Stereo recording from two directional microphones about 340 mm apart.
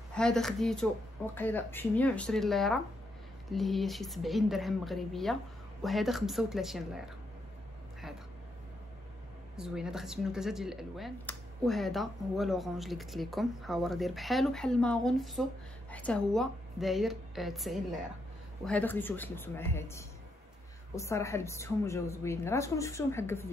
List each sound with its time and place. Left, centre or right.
0.1 s speech: centre
9.6 s a woman's voice: centre